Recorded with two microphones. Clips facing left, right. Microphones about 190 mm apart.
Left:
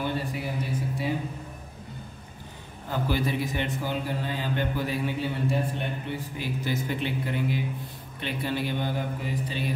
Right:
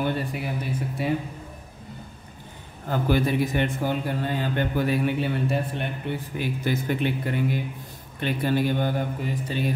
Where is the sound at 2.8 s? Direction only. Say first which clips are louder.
Right 5 dB; 55° right (ahead or behind).